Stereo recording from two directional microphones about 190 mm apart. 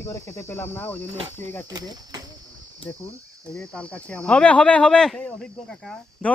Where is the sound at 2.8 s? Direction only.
30° left (ahead or behind).